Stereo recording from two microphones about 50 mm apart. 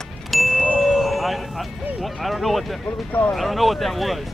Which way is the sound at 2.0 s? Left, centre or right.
Centre.